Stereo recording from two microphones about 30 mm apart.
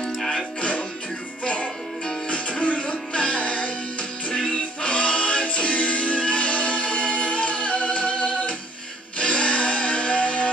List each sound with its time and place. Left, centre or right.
0.2 s music: centre
0.6 s music: left